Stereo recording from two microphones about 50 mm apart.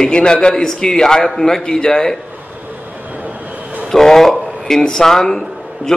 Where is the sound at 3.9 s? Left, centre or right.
Centre.